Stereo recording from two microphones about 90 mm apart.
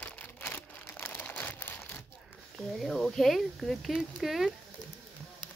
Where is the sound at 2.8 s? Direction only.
Centre (ahead or behind).